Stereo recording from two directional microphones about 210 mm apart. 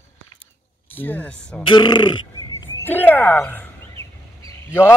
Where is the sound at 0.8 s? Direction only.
10° left (ahead or behind).